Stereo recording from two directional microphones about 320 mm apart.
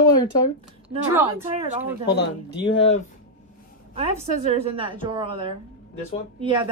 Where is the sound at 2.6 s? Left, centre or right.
Centre.